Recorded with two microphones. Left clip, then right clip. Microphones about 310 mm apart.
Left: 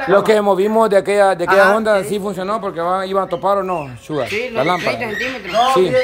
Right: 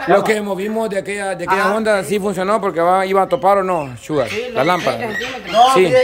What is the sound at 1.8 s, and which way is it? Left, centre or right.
A man's voice, centre.